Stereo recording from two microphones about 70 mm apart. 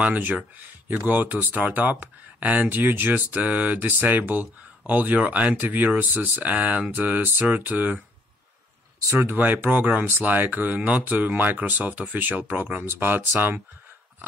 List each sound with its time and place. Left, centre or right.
0.0 s speech: right
9.2 s speech: right